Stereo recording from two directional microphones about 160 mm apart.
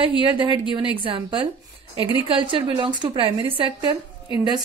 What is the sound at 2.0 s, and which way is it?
Speech, 30° left (ahead or behind).